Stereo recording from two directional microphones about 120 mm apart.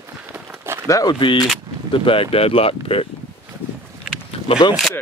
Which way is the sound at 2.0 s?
50° left (ahead or behind).